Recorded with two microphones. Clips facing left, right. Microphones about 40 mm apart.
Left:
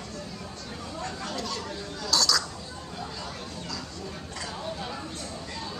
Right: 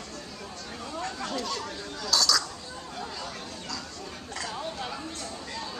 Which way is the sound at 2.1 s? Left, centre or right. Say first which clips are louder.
Even; centre.